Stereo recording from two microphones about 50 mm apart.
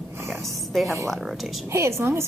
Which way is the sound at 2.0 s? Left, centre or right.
Right.